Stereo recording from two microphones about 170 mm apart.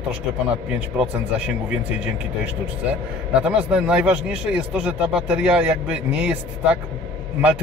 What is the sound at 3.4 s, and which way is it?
A man's voice, 5° right (ahead or behind).